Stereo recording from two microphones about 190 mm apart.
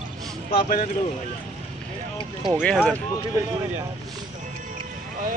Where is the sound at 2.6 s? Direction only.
5° left (ahead or behind).